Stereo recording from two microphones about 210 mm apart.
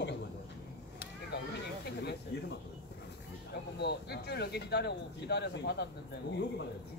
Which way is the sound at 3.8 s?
50° left (ahead or behind).